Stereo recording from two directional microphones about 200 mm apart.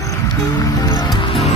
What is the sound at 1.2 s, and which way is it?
Music, 25° left (ahead or behind).